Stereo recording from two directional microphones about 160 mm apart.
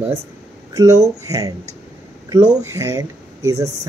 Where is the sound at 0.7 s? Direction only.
20° right (ahead or behind).